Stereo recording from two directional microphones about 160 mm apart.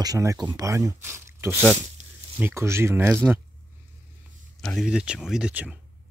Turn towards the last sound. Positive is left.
turn(degrees=-10)  # may be behind; listen again after turning